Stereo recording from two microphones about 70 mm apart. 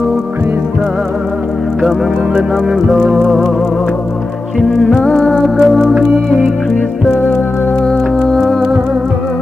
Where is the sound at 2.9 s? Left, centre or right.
Centre.